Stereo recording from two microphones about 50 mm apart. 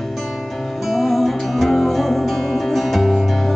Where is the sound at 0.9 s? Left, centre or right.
Centre.